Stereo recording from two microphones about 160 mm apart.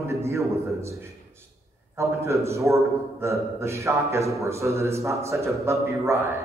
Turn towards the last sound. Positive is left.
turn(degrees=-20)  # may be behind; listen again after turning